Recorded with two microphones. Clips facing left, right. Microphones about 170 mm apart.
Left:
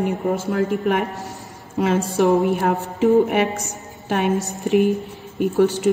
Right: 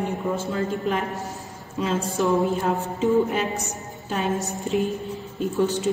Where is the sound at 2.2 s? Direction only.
65° left (ahead or behind).